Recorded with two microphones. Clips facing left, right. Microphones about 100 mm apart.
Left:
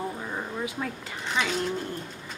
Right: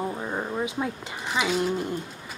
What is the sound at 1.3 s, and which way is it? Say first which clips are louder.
Speech: right 3 dB; 10° right (ahead or behind).